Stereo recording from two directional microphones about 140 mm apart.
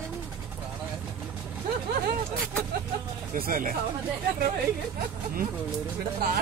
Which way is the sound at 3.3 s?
85° right.